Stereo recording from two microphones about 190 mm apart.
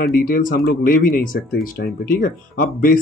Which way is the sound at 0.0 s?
50° left (ahead or behind).